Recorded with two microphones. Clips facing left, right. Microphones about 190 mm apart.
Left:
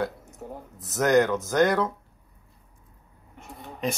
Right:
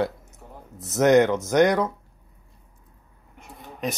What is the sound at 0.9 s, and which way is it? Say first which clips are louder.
Speech: right 4 dB; 20° right (ahead or behind).